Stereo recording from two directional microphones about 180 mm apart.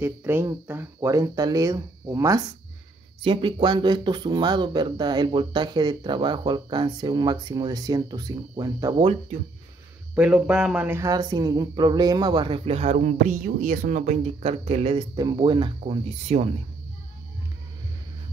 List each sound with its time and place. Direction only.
0.0 s speech: 15° right (ahead or behind)
3.2 s speech: 30° right (ahead or behind)
10.1 s speech: 5° right (ahead or behind); by 16.4 s 35° right (ahead or behind)